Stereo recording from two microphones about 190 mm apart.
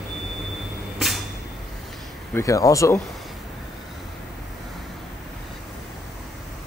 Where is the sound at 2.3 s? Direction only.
15° left (ahead or behind).